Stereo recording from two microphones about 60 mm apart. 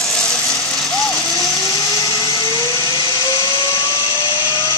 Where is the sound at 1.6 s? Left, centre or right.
Left.